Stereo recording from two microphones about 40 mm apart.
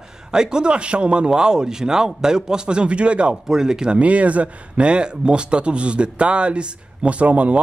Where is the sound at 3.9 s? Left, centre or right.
Right.